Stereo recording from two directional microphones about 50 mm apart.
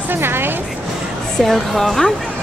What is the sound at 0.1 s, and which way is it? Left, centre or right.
Music, right.